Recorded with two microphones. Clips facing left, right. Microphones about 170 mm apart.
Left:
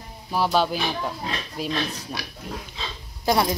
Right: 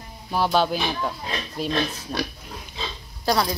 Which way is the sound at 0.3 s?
5° left (ahead or behind).